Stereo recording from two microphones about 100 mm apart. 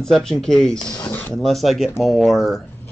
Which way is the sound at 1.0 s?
15° left (ahead or behind).